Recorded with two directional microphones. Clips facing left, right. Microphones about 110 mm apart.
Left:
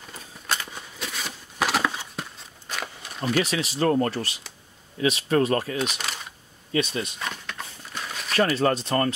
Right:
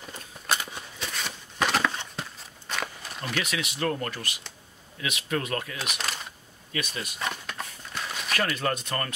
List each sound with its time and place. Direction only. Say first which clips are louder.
0.7 s a sound: left 1 dB; centre (ahead or behind)
3.2 s speech: left 7 dB; 35° left (ahead or behind)
5.8 s speech: left 5 dB; centre (ahead or behind)
6.7 s speech: left 8 dB; 30° left (ahead or behind)
7.2 s a sound: right 1 dB; 5° right (ahead or behind)
8.3 s speech: left 7 dB; 30° left (ahead or behind)